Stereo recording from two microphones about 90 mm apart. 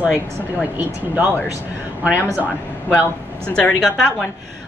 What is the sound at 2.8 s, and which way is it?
Speech, 20° left (ahead or behind).